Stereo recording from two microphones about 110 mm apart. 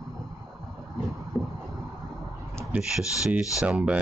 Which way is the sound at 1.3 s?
25° right (ahead or behind).